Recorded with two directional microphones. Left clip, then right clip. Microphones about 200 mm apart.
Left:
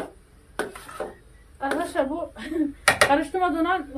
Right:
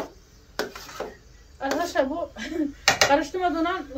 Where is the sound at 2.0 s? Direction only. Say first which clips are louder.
Right 1 dB; 10° left (ahead or behind).